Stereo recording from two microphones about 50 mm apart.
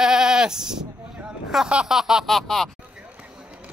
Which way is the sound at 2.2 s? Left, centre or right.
Centre.